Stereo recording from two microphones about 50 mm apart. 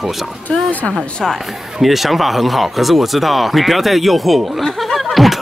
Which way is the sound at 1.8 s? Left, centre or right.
Centre.